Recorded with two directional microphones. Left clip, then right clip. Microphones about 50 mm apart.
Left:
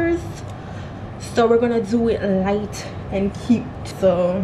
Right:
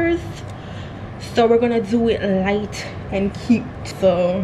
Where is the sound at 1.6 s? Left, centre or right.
Right.